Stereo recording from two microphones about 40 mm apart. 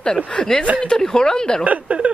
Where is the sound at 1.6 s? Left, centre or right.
Right.